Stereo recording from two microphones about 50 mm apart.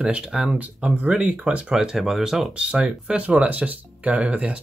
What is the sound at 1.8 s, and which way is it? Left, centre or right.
Speech, centre.